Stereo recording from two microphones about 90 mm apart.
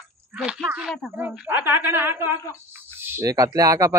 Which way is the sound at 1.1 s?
20° right (ahead or behind).